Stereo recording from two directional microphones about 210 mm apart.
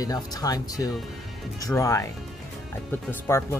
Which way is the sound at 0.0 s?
15° left (ahead or behind).